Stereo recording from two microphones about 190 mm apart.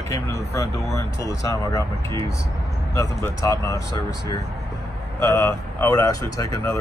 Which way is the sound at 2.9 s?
15° left (ahead or behind).